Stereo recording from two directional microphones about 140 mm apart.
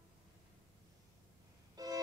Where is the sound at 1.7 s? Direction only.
25° right (ahead or behind).